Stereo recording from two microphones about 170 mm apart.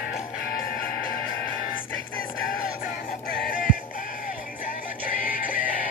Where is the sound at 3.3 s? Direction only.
55° left (ahead or behind).